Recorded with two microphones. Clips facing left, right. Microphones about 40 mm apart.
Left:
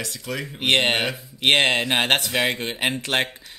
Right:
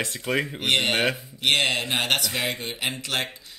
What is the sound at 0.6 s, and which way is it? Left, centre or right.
Speech, left.